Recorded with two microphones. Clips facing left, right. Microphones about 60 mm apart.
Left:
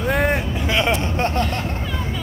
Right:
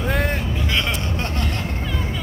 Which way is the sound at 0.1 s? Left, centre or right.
Centre.